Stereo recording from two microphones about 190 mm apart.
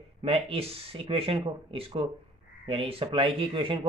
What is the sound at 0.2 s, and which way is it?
Speech, 30° right (ahead or behind).